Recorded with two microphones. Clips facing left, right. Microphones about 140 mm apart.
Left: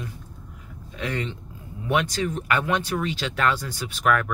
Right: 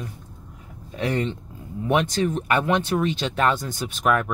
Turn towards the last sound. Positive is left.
turn(degrees=-20)  # may be behind; listen again after turning